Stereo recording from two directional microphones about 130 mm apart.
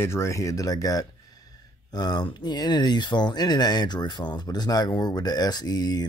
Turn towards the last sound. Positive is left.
turn(degrees=30)  # may be behind; listen again after turning